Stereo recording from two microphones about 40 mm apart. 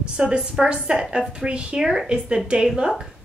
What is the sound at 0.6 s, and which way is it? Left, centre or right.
Speech, centre.